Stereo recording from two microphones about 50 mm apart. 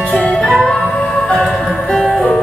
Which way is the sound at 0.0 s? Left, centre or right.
Left.